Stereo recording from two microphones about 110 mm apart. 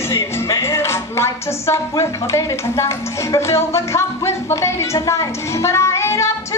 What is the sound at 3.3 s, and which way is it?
Music, 25° left (ahead or behind).